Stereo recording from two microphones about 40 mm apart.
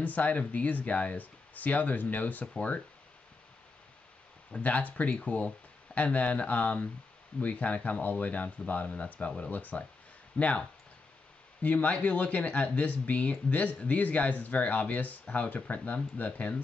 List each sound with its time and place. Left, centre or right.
0.0 s speech: left
2.5 s speech: left
4.6 s speech: left
10.3 s speech: left
11.6 s speech: left